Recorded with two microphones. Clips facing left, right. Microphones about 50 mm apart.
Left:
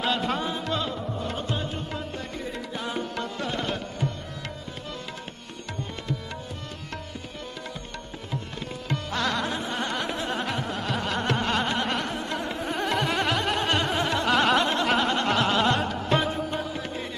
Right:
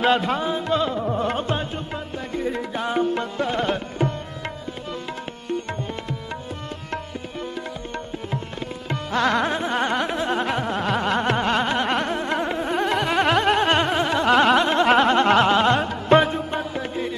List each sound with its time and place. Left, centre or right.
0.0 s music: right
0.3 s music: centre
1.0 s music: right
2.3 s tabla: right
8.8 s music: right
13.2 s a sound: right
13.9 s music: centre
14.8 s a sound: right
15.4 s carnatic music: right
16.1 s a sound: right